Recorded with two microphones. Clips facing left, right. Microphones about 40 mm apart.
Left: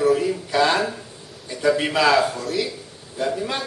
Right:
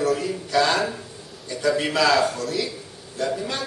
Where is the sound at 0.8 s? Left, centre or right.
Centre.